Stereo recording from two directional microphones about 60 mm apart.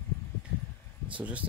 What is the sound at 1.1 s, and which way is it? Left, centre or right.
Speech, right.